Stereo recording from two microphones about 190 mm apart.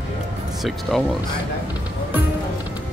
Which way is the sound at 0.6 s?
Centre (ahead or behind).